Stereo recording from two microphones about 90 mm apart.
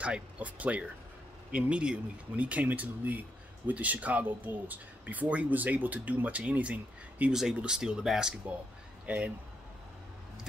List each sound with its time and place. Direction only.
0.0 s speech: 15° right (ahead or behind)
9.0 s speech: 15° right (ahead or behind)